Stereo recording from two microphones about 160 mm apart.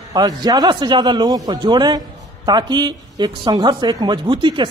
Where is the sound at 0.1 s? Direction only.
25° right (ahead or behind).